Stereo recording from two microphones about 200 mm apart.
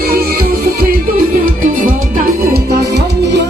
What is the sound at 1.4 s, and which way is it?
Music, 40° right (ahead or behind).